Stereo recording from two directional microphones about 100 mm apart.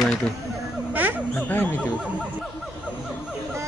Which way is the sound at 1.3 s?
20° left (ahead or behind).